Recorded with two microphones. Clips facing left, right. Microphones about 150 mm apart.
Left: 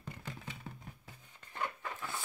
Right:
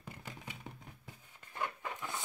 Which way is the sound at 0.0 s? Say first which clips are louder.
Left 2 dB; 10° right (ahead or behind).